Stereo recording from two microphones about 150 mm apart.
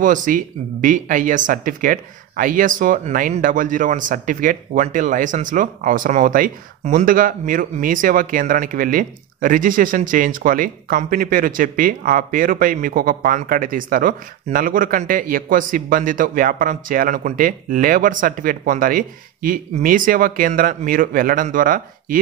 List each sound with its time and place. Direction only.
0.0 s speech: 60° right (ahead or behind)